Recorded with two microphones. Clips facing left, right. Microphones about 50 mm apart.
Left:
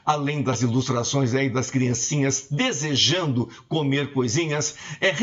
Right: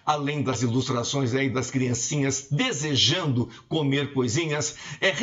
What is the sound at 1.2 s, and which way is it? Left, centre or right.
Speech, centre.